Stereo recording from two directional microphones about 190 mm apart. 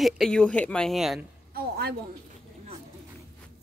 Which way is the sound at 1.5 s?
55° right (ahead or behind).